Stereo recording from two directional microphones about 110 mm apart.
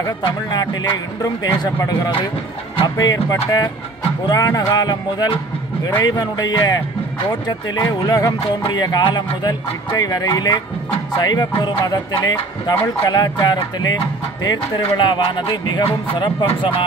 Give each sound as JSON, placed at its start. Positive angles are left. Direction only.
{"t": 0.2, "sound": "speech", "side_deg": 40}
{"t": 15.0, "sound": "speech", "side_deg": 45}